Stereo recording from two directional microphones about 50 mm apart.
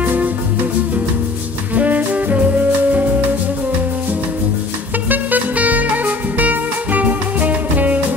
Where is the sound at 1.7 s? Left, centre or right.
Right.